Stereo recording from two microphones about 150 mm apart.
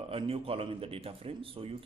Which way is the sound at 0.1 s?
40° right (ahead or behind).